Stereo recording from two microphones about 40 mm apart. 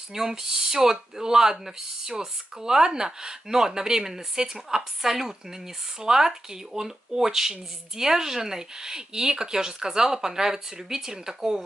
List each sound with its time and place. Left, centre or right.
0.1 s speech: centre